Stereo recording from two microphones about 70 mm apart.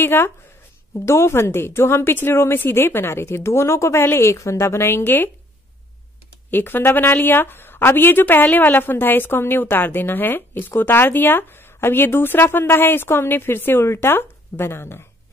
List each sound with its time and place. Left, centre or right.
0.0 s a woman's voice: left
6.5 s a woman's voice: left